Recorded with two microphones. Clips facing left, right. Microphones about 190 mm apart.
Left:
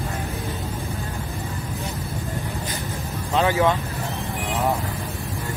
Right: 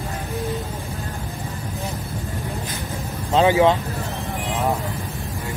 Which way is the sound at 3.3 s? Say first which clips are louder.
Right 4 dB; 20° right (ahead or behind).